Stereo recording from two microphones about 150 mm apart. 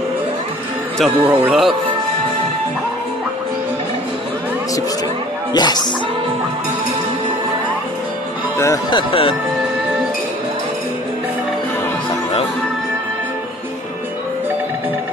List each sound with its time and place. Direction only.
1.2 s speech: 10° right (ahead or behind)
5.5 s speech: 25° left (ahead or behind)
8.9 s speech: 35° left (ahead or behind)